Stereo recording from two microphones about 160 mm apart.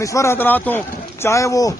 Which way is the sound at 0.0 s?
20° left (ahead or behind).